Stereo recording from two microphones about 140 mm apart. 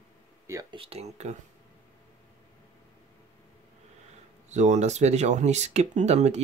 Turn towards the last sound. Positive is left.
turn(degrees=-55)  # may be behind; listen again after turning